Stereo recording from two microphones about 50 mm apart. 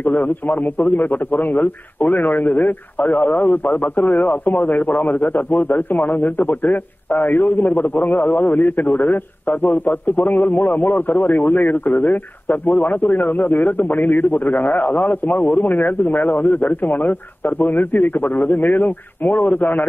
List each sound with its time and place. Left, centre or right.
0.0 s a man's voice: left